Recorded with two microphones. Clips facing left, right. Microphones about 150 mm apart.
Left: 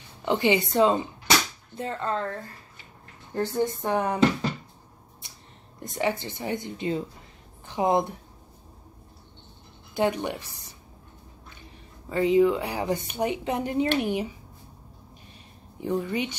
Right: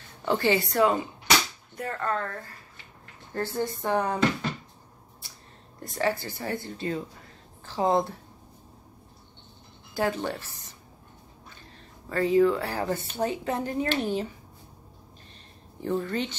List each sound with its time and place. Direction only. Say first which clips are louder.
0.2 s speech: left 1 dB; 20° left (ahead or behind)
3.3 s speech: left 3 dB; 15° left (ahead or behind)
5.8 s speech: even; 20° left (ahead or behind)
9.9 s speech: left 2 dB; 20° left (ahead or behind)
15.8 s speech: left 1 dB; 15° left (ahead or behind)